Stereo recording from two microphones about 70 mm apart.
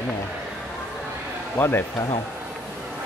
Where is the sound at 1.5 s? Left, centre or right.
Left.